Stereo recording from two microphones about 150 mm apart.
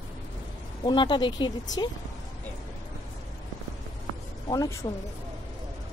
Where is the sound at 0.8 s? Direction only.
30° left (ahead or behind).